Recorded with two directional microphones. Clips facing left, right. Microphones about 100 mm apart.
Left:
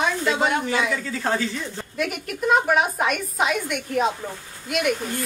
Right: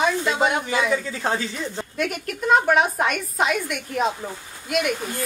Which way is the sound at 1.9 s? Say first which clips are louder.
Left 1 dB; centre (ahead or behind).